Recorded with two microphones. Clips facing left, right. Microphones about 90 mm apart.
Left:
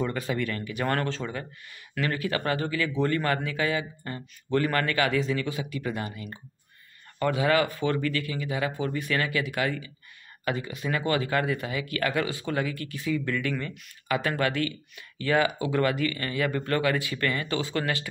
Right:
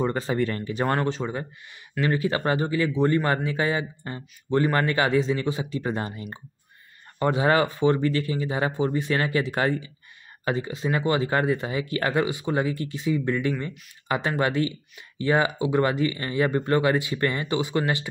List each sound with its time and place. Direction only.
0.0 s speech: 30° right (ahead or behind)
0.9 s speech: 20° right (ahead or behind)